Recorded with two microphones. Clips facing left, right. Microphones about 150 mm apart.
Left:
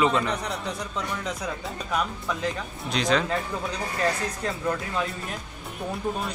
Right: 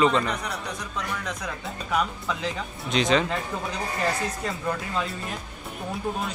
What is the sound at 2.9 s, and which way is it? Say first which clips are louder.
Speech: right 2 dB; centre (ahead or behind).